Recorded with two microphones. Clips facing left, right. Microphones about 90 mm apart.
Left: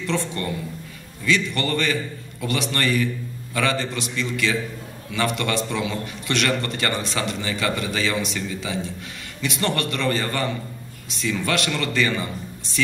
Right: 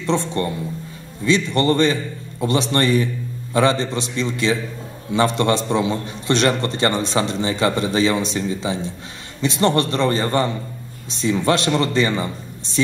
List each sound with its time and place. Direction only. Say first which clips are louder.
0.0 s a man's voice: right 5 dB; 25° right (ahead or behind)